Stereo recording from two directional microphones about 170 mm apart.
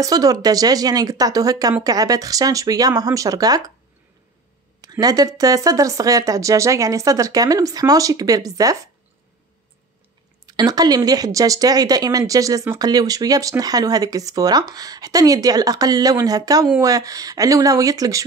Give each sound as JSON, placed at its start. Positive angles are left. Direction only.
{"t": 0.0, "sound": "speech", "side_deg": -20}
{"t": 5.0, "sound": "speech", "side_deg": -20}
{"t": 10.4, "sound": "speech", "side_deg": -20}